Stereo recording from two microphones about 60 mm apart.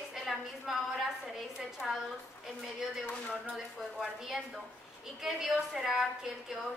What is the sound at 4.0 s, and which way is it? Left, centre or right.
A woman's voice, centre.